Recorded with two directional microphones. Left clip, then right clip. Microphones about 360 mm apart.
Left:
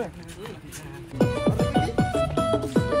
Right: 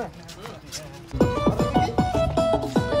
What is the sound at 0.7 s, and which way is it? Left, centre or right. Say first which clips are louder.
Music: right 3 dB; right.